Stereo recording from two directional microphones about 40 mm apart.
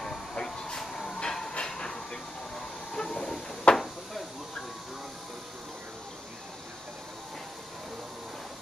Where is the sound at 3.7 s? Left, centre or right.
Left.